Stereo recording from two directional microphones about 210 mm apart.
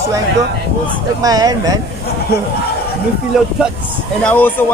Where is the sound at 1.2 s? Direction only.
15° right (ahead or behind).